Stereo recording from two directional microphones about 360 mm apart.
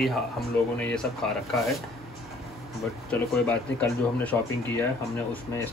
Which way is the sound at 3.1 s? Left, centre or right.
Centre.